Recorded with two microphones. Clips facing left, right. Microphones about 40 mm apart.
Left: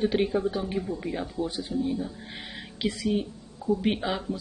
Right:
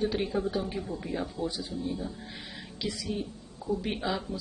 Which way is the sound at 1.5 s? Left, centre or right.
Left.